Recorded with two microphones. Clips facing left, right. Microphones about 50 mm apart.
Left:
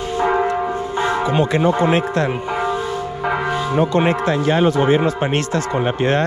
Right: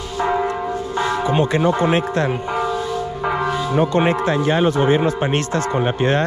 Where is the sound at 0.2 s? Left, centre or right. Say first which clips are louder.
Left 2 dB; centre.